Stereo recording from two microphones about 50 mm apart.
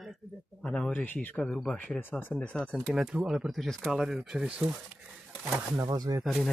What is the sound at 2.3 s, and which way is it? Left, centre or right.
Speech, centre.